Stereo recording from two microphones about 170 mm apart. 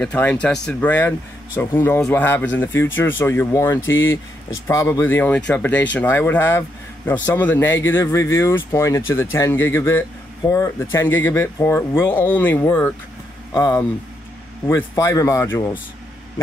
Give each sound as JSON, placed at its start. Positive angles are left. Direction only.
{"t": 0.0, "sound": "speech", "side_deg": 10}